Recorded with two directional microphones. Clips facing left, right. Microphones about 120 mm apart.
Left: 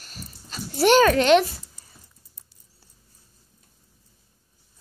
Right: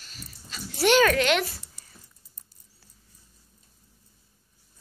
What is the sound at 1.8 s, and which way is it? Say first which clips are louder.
Patter: left 1 dB; 75° right (ahead or behind).